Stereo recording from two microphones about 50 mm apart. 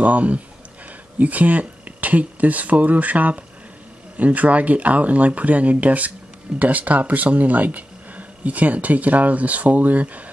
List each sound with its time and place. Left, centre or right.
0.0 s speech: right